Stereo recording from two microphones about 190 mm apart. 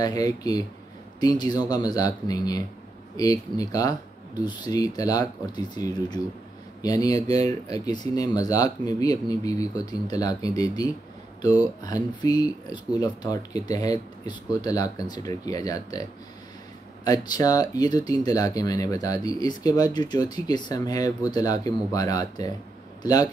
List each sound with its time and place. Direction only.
0.0 s speech: 20° left (ahead or behind)
17.0 s speech: 20° left (ahead or behind)